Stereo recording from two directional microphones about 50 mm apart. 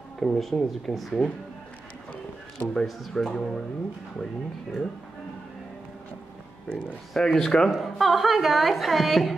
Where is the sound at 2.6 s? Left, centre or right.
Centre.